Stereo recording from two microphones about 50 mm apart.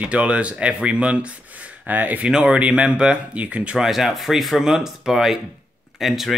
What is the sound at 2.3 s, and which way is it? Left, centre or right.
Speech, centre.